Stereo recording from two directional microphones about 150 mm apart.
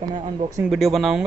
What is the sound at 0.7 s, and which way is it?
Speech, centre (ahead or behind).